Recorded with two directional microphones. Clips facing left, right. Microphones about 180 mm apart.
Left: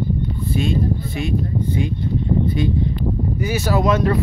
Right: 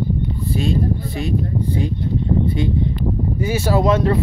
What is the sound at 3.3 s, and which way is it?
Speech, 30° right (ahead or behind).